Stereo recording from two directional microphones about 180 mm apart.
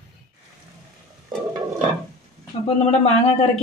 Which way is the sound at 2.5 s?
35° left (ahead or behind).